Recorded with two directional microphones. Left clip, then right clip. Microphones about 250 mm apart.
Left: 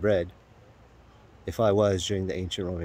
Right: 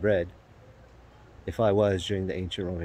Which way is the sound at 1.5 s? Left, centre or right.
Centre.